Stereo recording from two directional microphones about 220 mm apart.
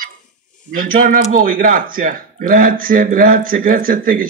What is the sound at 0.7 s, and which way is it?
Speech, 40° right (ahead or behind).